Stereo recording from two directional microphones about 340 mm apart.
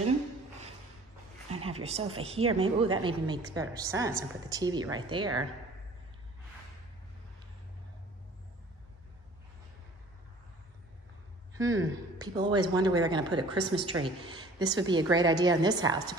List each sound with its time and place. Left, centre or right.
1.5 s a woman's voice: centre
11.5 s speech: centre